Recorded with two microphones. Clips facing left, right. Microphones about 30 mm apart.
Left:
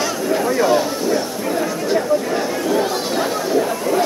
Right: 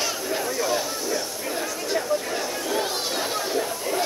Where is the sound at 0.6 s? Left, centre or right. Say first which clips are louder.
Left 9 dB; left.